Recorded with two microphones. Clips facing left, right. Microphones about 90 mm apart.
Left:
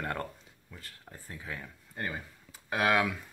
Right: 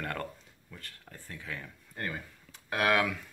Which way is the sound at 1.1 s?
20° left (ahead or behind).